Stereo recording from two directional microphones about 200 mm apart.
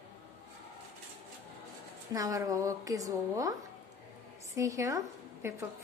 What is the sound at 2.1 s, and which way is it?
A woman's voice, 15° right (ahead or behind).